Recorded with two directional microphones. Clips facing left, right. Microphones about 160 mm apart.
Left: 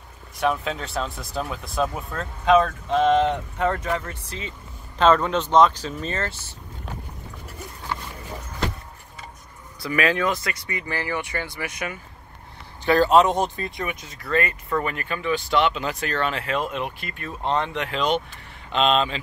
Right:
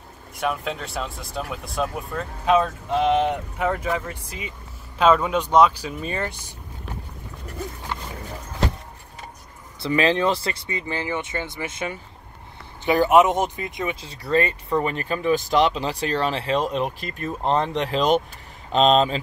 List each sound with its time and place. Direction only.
0.4 s speech: centre (ahead or behind)
9.8 s speech: 25° right (ahead or behind)